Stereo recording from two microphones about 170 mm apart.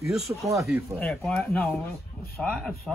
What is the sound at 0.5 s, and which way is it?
Speech, 15° right (ahead or behind).